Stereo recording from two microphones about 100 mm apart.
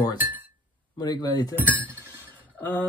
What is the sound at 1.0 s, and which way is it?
Speech, 45° left (ahead or behind).